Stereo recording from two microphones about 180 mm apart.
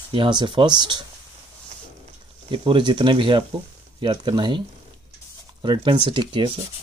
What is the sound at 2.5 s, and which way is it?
Speech, 25° right (ahead or behind).